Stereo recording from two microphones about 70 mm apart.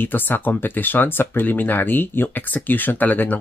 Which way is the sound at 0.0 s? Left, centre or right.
Left.